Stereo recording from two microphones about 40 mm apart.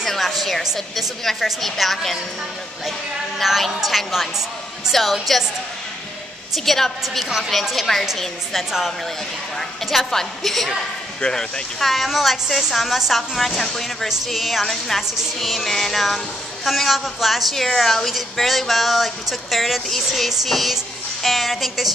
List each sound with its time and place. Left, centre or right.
0.0 s speech: centre
3.4 s speech: centre
6.6 s a woman's voice: centre
7.2 s a woman's voice: centre
7.9 s a woman's voice: centre
9.6 s speech: centre
11.1 s speech: left
11.8 s speech: centre